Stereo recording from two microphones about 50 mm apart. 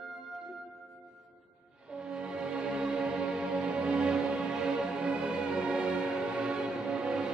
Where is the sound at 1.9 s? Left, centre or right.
Centre.